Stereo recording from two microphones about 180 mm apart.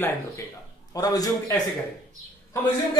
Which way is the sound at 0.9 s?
20° left (ahead or behind).